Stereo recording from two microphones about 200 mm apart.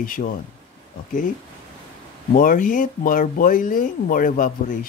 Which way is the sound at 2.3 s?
45° left (ahead or behind).